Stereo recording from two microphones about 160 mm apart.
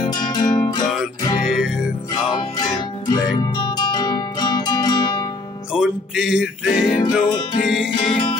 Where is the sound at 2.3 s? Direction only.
25° left (ahead or behind).